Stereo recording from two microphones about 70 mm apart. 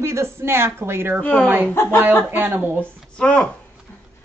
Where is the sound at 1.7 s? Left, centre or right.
Left.